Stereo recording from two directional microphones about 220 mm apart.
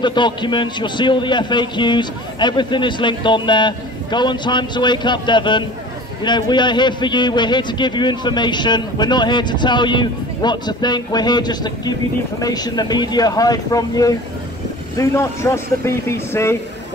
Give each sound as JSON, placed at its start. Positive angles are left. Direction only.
{"t": 0.0, "sound": "a man's voice", "side_deg": 20}